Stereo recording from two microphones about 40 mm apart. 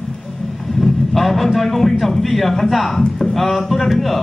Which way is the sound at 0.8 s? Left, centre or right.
Centre.